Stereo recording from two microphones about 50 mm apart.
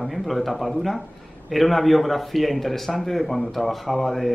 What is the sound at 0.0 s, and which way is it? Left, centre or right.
Speech, centre.